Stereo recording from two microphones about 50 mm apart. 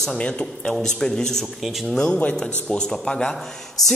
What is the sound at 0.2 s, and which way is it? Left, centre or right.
Speech, centre.